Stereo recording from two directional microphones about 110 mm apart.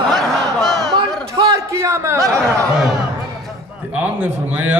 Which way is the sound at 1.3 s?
30° right (ahead or behind).